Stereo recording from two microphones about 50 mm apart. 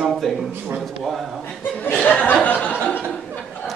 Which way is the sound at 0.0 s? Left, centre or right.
Centre.